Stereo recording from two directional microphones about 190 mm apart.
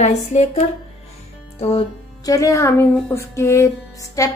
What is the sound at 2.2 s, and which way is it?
Speech, 15° left (ahead or behind).